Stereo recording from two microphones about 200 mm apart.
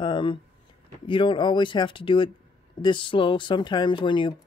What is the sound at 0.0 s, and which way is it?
Speech, 25° left (ahead or behind).